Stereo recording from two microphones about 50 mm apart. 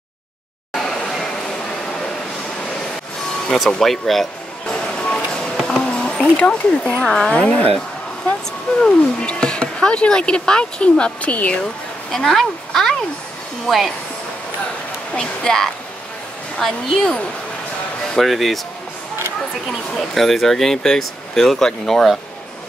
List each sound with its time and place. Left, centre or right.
0.7 s a sound: centre
3.5 s speech: centre
4.6 s music: centre
5.6 s a sound: centre
5.9 s a sound: centre
7.0 s speech: centre
7.3 s speech: left
8.8 s speech: centre
12.1 s speech: centre
15.1 s speech: centre
20.0 s speech: centre